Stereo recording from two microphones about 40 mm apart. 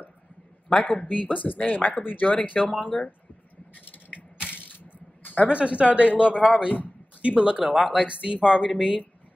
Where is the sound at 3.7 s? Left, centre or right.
Left.